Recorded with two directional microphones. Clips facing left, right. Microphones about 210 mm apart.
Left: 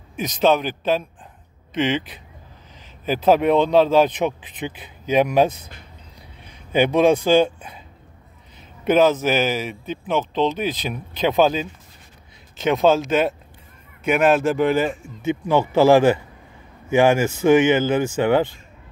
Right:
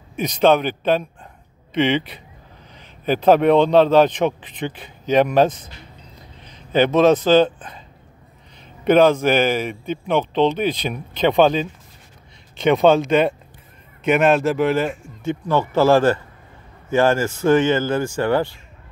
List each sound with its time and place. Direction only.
0.1 s speech: centre (ahead or behind)
8.8 s speech: 5° left (ahead or behind)